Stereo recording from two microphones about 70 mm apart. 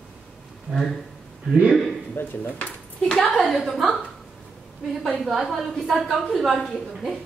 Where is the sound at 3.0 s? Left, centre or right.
Centre.